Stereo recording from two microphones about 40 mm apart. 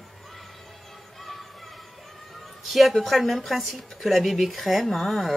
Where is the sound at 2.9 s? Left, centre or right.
Centre.